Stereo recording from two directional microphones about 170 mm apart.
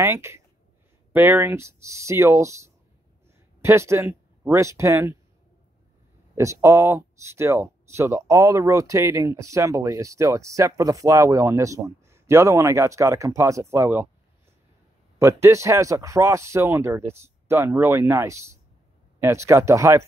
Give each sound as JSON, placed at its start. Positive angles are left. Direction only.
{"t": 0.0, "sound": "speech", "side_deg": -15}
{"t": 6.3, "sound": "speech", "side_deg": -15}
{"t": 15.1, "sound": "speech", "side_deg": -15}